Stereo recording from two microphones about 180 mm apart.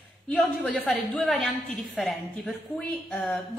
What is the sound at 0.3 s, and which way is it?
Speech, 5° left (ahead or behind).